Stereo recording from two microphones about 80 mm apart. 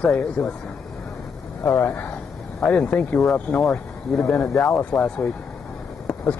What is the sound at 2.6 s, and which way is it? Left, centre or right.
A man's voice, centre.